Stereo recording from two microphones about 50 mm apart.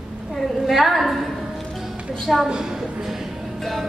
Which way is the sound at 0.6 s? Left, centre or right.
Centre.